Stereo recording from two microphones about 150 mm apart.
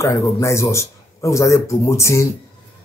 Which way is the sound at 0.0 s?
20° left (ahead or behind).